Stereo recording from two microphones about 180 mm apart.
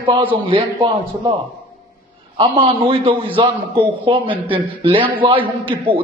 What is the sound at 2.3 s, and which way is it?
A man's voice, 30° right (ahead or behind).